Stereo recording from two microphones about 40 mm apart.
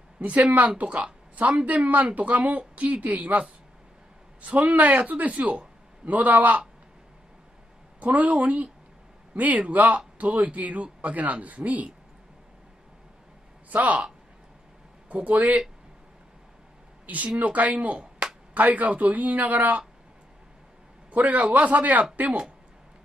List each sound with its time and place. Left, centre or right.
0.2 s speech: right
8.0 s speech: right
13.7 s speech: right
15.2 s speech: right
17.0 s speech: right
18.5 s speech: right
21.1 s speech: right